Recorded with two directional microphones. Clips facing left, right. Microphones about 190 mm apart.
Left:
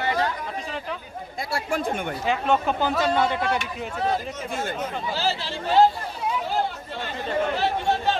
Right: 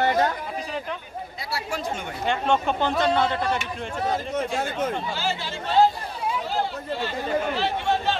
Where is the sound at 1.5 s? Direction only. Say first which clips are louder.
Left 4 dB; 50° left (ahead or behind).